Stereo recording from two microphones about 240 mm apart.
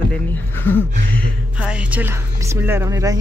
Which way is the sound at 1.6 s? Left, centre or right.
Centre.